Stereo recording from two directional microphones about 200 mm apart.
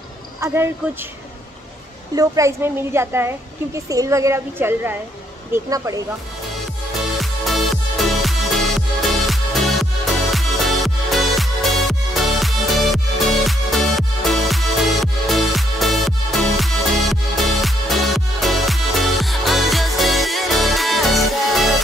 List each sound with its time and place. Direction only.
2.1 s a woman's voice: 15° right (ahead or behind)
7.2 s music: centre (ahead or behind)